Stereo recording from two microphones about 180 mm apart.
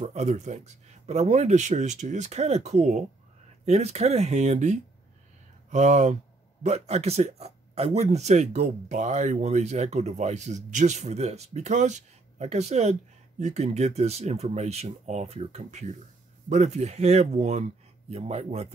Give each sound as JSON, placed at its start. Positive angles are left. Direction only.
{"t": 0.0, "sound": "speech", "side_deg": -40}